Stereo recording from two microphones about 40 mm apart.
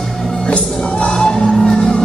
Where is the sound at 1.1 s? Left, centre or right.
Centre.